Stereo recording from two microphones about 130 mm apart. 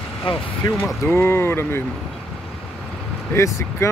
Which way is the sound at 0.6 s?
30° left (ahead or behind).